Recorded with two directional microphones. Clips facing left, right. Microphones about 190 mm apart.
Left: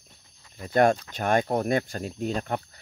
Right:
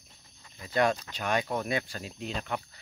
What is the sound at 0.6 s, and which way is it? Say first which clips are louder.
Speech: left 6 dB; 50° left (ahead or behind).